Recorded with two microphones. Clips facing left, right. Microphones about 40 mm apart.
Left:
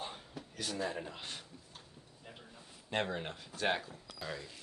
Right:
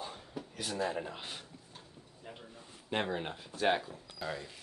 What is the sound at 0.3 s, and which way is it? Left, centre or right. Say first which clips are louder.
Speech: right 2 dB; centre.